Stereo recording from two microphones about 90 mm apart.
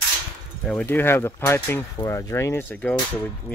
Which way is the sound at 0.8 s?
25° left (ahead or behind).